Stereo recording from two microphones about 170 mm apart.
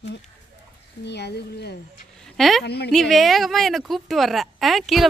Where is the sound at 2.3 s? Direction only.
Centre (ahead or behind).